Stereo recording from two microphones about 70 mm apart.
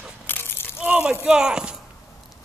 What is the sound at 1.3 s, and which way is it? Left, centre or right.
Speech, centre.